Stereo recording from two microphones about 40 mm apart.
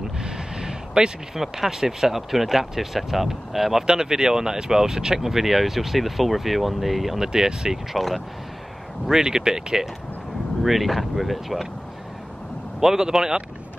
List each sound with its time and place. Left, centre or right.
0.2 s a sound: centre
1.4 s speech: centre
3.8 s speech: centre
7.2 s speech: centre
7.7 s speech: centre
9.2 s speech: centre
10.6 s speech: centre
12.8 s speech: centre